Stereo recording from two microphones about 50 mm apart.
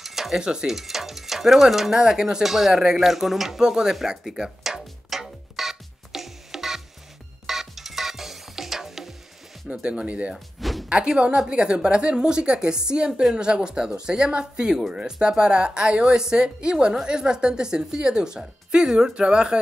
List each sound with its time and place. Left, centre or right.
0.0 s speech: centre
3.9 s music: centre
9.7 s a woman's voice: centre
10.3 s a sound: centre
10.9 s a woman's voice: centre